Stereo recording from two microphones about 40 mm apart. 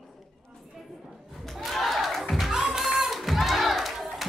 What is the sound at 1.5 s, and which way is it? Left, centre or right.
Battle cry, centre.